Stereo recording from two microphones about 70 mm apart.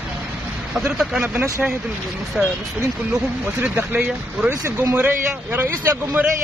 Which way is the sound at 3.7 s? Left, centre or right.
Right.